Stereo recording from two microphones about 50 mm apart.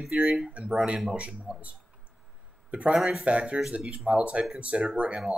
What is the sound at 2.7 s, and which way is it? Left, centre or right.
Speech, right.